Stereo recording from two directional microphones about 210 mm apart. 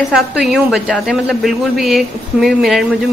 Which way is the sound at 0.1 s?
Centre (ahead or behind).